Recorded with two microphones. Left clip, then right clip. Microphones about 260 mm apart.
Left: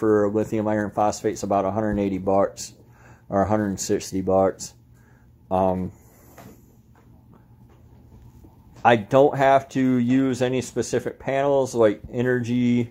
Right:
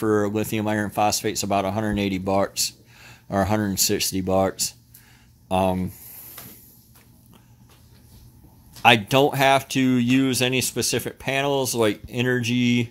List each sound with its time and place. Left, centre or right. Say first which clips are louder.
0.0 s speech: left 2 dB; right
0.3 s speech: left 2 dB; right
1.0 s speech: even; right
1.6 s speech: left 1 dB; right
8.8 s speech: even; right